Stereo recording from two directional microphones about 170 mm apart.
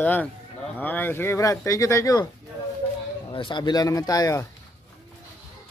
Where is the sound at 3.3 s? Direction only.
30° left (ahead or behind).